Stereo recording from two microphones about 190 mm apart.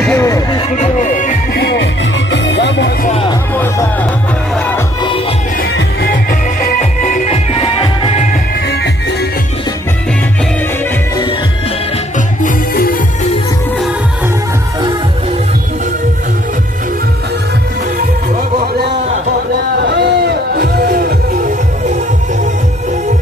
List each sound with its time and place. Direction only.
0.0 s music: 15° left (ahead or behind)
0.7 s music: 40° left (ahead or behind); by 3.1 s 65° left (ahead or behind)
3.1 s music: 30° left (ahead or behind)
3.5 s music: 15° left (ahead or behind)
6.6 s music: 45° left (ahead or behind); by 8.2 s 25° left (ahead or behind)
12.4 s music: 45° left (ahead or behind)
19.7 s music: 60° right (ahead or behind)